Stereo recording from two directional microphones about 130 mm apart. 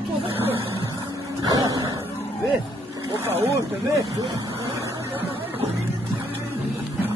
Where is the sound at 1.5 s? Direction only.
30° right (ahead or behind).